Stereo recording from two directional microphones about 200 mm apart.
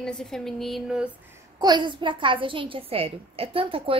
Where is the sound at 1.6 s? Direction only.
20° right (ahead or behind).